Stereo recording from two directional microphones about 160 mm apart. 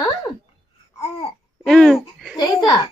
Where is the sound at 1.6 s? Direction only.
5° left (ahead or behind).